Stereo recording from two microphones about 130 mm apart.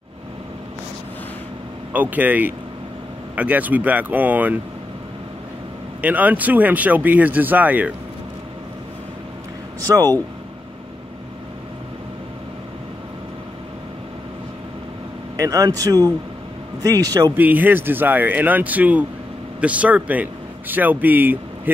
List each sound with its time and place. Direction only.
1.9 s speech: 15° right (ahead or behind)
5.9 s speech: 15° right (ahead or behind)
9.8 s speech: 30° right (ahead or behind)
15.3 s speech: 25° right (ahead or behind)
17.4 s speech: 15° right (ahead or behind)